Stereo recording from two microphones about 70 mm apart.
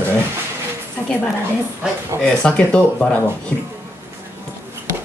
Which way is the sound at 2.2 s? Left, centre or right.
Centre.